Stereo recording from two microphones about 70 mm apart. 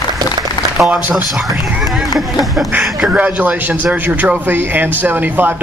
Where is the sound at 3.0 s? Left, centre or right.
Right.